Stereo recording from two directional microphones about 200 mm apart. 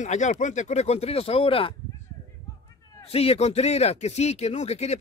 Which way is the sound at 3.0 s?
30° left (ahead or behind).